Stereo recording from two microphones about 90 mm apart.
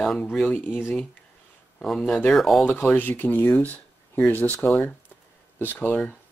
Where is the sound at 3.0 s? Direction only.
20° left (ahead or behind).